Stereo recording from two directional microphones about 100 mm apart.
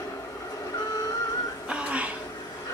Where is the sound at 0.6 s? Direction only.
40° left (ahead or behind).